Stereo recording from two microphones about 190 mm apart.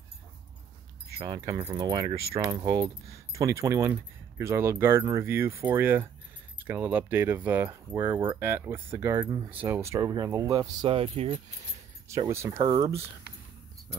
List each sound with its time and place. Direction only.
1.1 s speech: 25° right (ahead or behind)
12.1 s speech: 15° right (ahead or behind)